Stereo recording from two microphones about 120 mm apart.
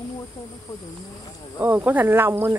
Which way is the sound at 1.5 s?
15° right (ahead or behind).